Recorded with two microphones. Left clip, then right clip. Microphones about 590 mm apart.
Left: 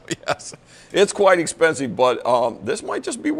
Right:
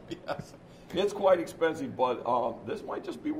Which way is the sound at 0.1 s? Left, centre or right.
Left.